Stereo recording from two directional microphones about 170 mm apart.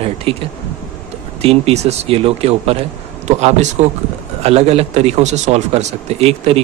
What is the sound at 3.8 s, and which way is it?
Speech, 40° right (ahead or behind).